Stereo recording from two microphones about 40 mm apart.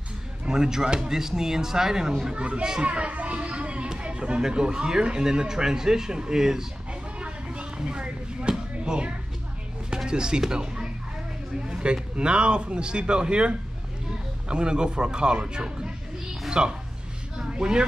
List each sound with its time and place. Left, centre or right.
0.5 s a man's voice: centre
2.3 s a man's voice: right; by 6.6 s centre
6.9 s a sound: right
10.0 s speech: right